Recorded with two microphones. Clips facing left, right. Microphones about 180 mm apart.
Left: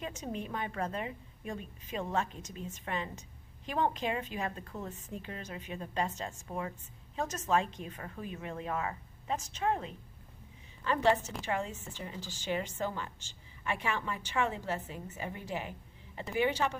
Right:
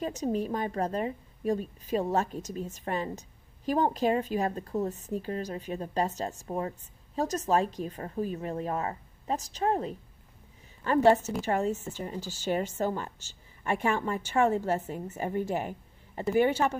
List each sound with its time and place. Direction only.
0.0 s a woman's voice: 40° right (ahead or behind)